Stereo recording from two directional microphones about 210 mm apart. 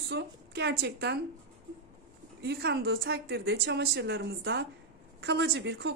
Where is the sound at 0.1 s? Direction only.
50° right (ahead or behind).